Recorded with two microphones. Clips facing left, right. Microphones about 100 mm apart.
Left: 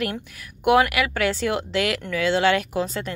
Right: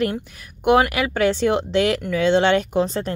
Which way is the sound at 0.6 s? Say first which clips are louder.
Right 1 dB; 25° right (ahead or behind).